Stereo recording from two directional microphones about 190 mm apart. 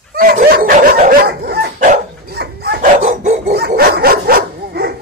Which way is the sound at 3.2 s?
40° right (ahead or behind).